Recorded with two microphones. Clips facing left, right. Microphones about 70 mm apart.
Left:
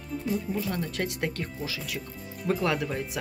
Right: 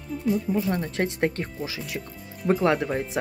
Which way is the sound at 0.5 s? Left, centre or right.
Right.